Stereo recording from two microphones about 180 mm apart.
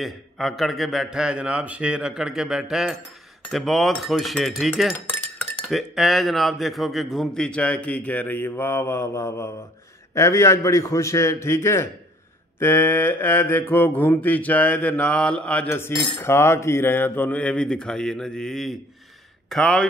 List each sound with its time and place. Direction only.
0.0 s a man's voice: centre (ahead or behind)
5.7 s mantra: centre (ahead or behind)
19.5 s a man's voice: 5° left (ahead or behind)